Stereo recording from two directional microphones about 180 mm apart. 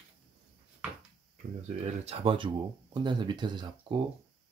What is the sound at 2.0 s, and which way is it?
Speech, 30° right (ahead or behind).